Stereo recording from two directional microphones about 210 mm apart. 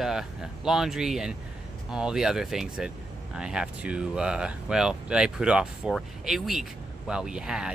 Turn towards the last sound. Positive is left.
turn(degrees=-5)  # may be behind; listen again after turning